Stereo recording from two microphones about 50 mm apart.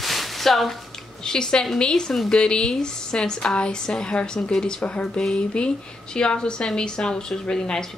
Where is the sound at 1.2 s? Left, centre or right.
Centre.